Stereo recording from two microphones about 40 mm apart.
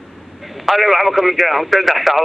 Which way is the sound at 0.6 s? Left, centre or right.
Centre.